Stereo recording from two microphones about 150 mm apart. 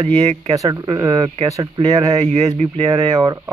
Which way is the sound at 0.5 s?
20° right (ahead or behind).